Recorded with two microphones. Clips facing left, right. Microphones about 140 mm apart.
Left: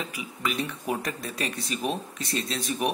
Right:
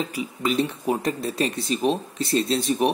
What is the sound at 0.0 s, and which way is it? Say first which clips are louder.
Speech: right 6 dB; 30° right (ahead or behind).